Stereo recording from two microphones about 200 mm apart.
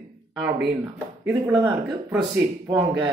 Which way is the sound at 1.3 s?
15° right (ahead or behind).